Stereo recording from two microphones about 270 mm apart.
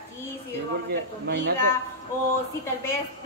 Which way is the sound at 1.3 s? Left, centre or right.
Right.